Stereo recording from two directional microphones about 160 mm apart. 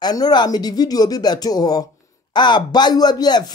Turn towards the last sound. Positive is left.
turn(degrees=25)  # may be behind; listen again after turning